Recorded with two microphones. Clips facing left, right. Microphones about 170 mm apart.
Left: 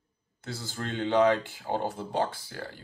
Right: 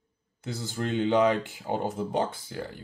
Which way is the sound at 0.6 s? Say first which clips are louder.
Right 5 dB; 20° right (ahead or behind).